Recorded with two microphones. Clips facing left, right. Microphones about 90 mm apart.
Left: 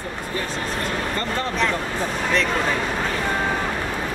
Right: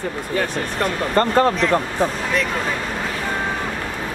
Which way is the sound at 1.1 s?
50° right (ahead or behind).